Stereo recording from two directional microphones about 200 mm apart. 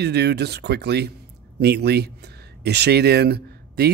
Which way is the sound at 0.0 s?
55° right (ahead or behind).